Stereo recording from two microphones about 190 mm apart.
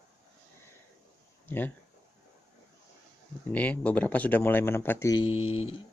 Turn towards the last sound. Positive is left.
turn(degrees=90)